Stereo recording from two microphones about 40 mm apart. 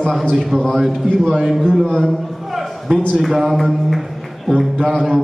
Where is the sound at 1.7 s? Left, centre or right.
Centre.